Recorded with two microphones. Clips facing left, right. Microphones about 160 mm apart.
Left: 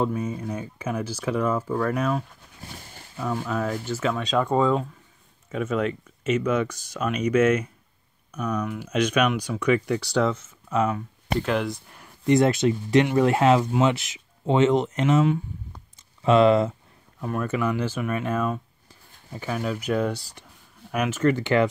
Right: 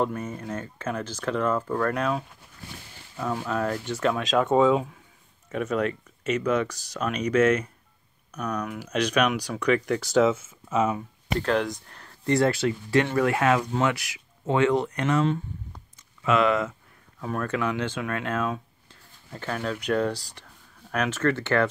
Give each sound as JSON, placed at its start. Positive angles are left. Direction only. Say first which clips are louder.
{"t": 0.0, "sound": "speech", "louder": "left 2 dB", "side_deg": 10}
{"t": 17.2, "sound": "speech", "louder": "left 2 dB", "side_deg": 5}